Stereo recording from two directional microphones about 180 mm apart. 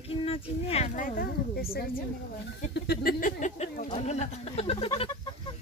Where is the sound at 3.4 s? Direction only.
40° left (ahead or behind).